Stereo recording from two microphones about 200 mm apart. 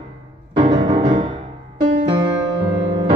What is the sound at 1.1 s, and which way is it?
Music, 20° right (ahead or behind).